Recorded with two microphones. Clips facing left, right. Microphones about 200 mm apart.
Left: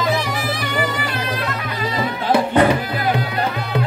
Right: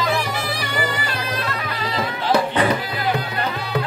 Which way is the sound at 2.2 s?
50° left (ahead or behind).